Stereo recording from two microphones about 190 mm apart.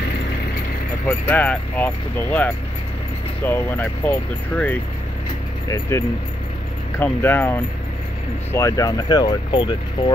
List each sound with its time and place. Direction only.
1.0 s speech: 10° left (ahead or behind)